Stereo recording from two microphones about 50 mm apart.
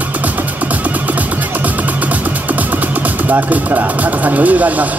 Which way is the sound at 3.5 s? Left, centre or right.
Right.